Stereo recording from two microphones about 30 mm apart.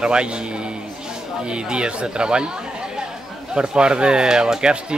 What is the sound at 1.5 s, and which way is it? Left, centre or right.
Speech, right.